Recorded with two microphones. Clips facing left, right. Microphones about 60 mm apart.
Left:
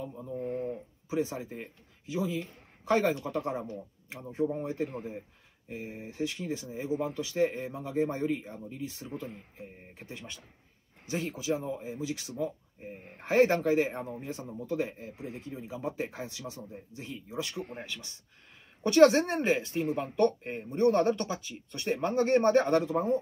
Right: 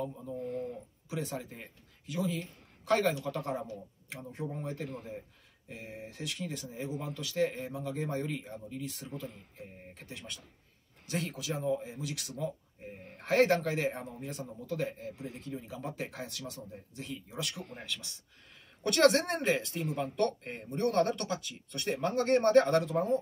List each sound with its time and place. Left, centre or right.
0.4 s a man's voice: left